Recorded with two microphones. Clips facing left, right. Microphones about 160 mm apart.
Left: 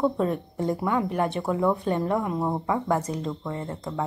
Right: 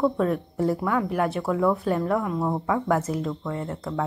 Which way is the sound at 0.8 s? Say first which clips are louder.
Even; 10° left (ahead or behind).